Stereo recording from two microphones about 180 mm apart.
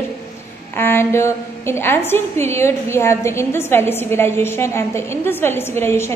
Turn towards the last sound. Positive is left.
turn(degrees=15)  # may be behind; listen again after turning